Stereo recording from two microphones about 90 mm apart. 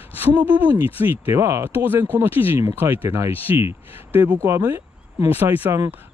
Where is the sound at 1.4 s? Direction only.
30° right (ahead or behind).